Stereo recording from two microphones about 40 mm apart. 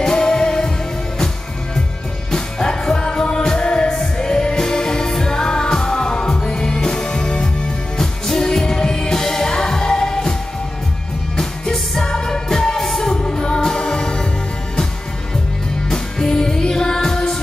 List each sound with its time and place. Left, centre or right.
0.0 s music: centre
2.3 s music: centre
11.3 s music: centre
13.2 s music: centre
15.9 s music: centre